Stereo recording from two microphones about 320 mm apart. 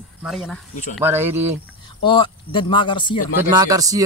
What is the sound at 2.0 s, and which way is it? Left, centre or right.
Speech, centre.